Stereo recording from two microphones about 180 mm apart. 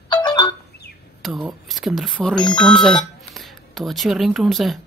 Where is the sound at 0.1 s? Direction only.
25° left (ahead or behind).